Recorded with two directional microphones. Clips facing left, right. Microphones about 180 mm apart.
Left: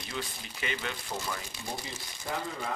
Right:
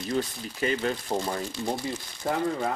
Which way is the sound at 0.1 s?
40° right (ahead or behind).